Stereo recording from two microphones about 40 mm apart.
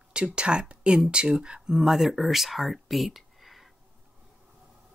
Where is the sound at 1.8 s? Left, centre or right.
Centre.